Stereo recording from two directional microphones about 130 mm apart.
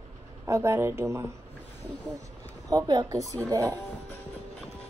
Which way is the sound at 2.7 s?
30° right (ahead or behind).